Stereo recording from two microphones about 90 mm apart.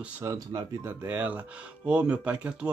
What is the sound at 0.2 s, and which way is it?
Speech, 40° right (ahead or behind).